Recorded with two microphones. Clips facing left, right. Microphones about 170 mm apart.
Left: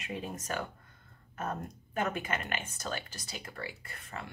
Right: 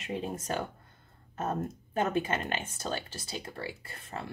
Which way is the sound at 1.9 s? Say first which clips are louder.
Right 4 dB; 30° right (ahead or behind).